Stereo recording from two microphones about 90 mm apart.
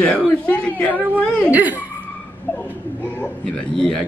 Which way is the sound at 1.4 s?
20° right (ahead or behind).